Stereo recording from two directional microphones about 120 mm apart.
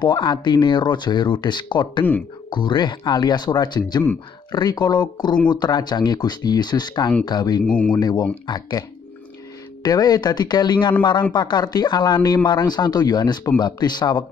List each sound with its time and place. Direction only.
0.0 s speech: 40° left (ahead or behind)
7.6 s speech: 10° left (ahead or behind)
7.9 s speech: 35° left (ahead or behind)
9.8 s speech: 35° left (ahead or behind)